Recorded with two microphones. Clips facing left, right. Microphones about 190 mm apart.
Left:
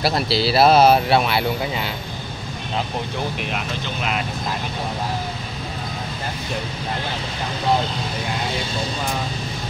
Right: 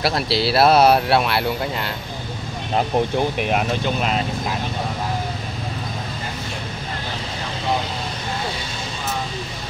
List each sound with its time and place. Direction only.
0.0 s speech: centre (ahead or behind)
3.4 s speech: 45° right (ahead or behind)